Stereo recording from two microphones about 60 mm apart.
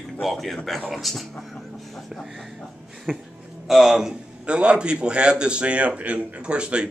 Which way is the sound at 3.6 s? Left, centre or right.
Centre.